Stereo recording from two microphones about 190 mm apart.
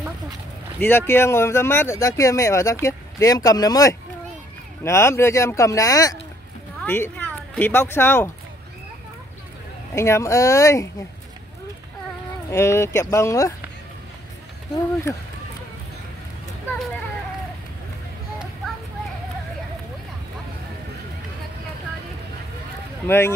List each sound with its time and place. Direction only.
0.7 s speech: 10° left (ahead or behind)
9.9 s speech: 15° left (ahead or behind)
12.4 s speech: 15° left (ahead or behind)
23.0 s speech: 10° left (ahead or behind)